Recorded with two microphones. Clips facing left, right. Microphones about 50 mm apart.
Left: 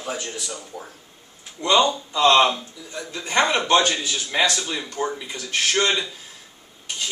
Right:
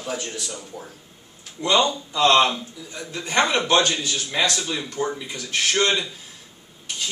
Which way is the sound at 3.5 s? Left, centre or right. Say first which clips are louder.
Left 1 dB; centre.